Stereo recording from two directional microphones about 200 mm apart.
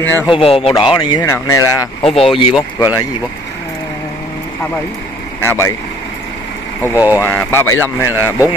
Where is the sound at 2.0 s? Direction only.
30° left (ahead or behind).